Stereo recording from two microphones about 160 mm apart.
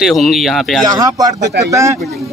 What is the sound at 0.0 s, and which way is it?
Speech, centre (ahead or behind).